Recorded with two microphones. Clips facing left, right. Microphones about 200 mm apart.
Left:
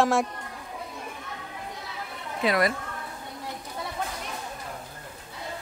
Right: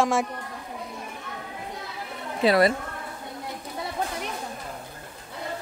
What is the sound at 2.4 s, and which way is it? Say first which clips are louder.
Speech: right 5 dB; 30° right (ahead or behind).